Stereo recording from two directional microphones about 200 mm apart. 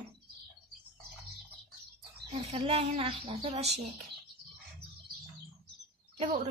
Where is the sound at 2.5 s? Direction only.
30° right (ahead or behind).